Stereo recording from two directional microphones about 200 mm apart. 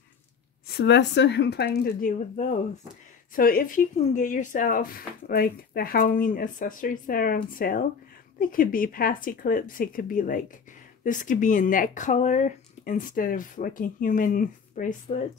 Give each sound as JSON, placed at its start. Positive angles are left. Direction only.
{"t": 0.7, "sound": "speech", "side_deg": 60}